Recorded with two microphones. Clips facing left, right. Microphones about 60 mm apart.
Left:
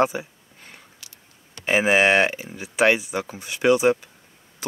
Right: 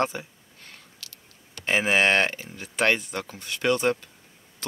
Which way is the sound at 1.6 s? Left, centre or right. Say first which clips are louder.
Left 4 dB; centre.